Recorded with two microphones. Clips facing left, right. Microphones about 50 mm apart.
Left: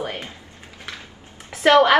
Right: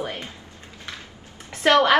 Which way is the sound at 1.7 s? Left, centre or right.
Centre.